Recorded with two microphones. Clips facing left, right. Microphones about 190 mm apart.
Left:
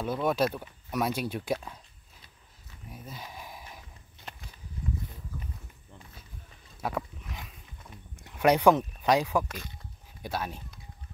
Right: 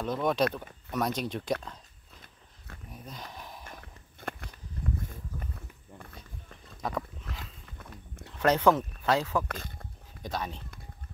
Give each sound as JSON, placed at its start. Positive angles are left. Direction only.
{"t": 0.0, "sound": "speech", "side_deg": 5}
{"t": 2.9, "sound": "a sound", "side_deg": 5}
{"t": 3.6, "sound": "walk", "side_deg": -55}
{"t": 6.8, "sound": "a sound", "side_deg": 10}
{"t": 8.4, "sound": "speech", "side_deg": 15}
{"t": 9.5, "sound": "speech", "side_deg": -55}
{"t": 10.2, "sound": "speech", "side_deg": 10}